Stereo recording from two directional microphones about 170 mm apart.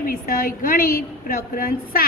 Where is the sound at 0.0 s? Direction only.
55° left (ahead or behind).